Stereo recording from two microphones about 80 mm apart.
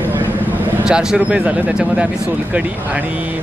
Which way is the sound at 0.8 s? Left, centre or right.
Centre.